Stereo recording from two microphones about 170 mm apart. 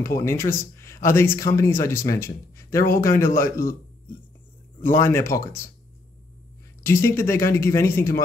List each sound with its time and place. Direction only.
0.0 s speech: 15° left (ahead or behind)
3.1 s speech: 55° left (ahead or behind)
4.9 s speech: 15° left (ahead or behind)
6.8 s speech: 15° left (ahead or behind)